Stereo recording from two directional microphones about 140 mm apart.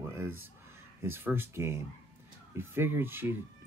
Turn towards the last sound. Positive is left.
turn(degrees=-15)  # may be behind; listen again after turning